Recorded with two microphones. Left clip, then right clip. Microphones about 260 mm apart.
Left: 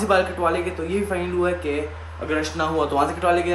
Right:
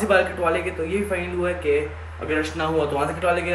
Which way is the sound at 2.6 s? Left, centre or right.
Centre.